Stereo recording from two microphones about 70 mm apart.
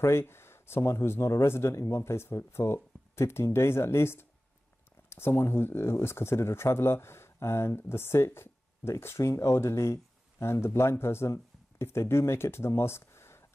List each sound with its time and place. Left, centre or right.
0.0 s speech: left